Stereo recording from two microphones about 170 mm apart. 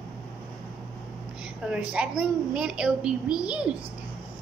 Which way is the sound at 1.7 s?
5° right (ahead or behind).